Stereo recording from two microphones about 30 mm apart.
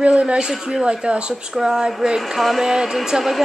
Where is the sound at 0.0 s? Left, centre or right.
Right.